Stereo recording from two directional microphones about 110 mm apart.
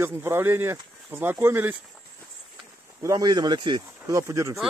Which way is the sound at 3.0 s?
35° right (ahead or behind).